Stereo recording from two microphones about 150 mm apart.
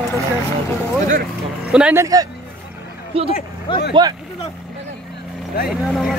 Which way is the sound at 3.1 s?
40° right (ahead or behind).